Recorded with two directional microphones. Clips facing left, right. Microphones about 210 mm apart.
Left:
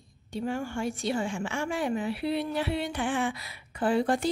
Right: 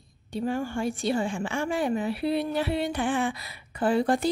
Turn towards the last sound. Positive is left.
turn(degrees=-40)  # may be behind; listen again after turning